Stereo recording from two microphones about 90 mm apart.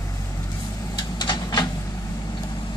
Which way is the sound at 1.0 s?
55° left (ahead or behind).